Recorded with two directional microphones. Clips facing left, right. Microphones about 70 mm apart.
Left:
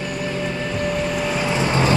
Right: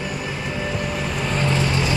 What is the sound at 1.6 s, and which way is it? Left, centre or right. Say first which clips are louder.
Vehicle: left 4 dB; left.